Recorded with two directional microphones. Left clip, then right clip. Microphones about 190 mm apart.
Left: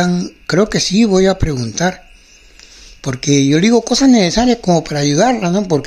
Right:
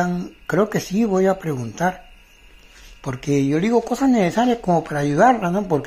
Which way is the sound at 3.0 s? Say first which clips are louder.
Left 7 dB; 50° left (ahead or behind).